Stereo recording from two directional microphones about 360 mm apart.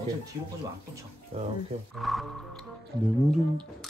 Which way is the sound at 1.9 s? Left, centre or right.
Centre.